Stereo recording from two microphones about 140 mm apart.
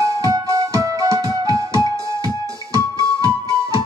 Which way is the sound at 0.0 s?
25° right (ahead or behind).